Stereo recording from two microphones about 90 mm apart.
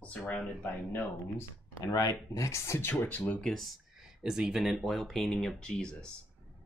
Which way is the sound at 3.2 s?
5° left (ahead or behind).